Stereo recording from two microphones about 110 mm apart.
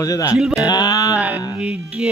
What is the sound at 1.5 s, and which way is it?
Music, 5° right (ahead or behind).